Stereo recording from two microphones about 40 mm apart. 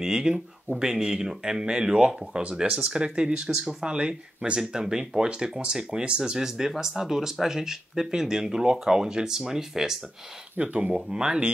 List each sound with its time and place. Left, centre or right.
0.0 s speech: centre
10.6 s speech: right
11.1 s speech: right